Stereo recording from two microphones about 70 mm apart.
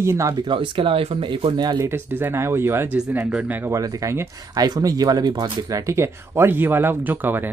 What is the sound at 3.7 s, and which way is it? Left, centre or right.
Speech, right.